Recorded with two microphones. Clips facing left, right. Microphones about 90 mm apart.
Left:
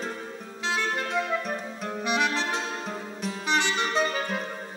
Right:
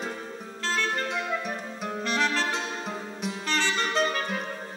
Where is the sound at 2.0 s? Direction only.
15° left (ahead or behind).